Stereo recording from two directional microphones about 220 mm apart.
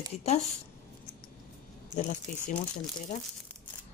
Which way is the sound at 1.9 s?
35° left (ahead or behind).